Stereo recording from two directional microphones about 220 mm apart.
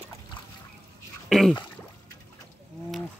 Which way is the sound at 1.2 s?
Centre (ahead or behind).